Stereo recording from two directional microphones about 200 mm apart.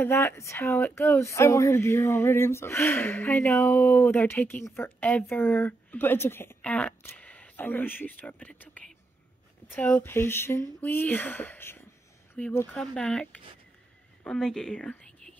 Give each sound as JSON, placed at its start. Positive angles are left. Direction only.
{"t": 0.0, "sound": "speech", "side_deg": 10}